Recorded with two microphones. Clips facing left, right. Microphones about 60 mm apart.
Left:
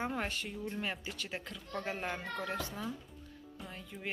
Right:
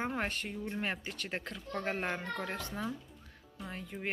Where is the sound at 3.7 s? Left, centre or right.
Right.